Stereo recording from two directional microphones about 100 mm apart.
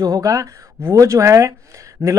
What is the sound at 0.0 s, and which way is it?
A man's voice, 35° right (ahead or behind).